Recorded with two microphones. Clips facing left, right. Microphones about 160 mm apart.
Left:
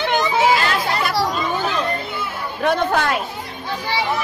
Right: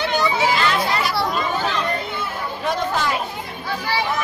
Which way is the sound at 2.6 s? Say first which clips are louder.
Left 4 dB; 60° left (ahead or behind).